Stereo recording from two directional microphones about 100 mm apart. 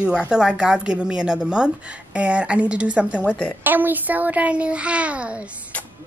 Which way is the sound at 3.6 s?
20° right (ahead or behind).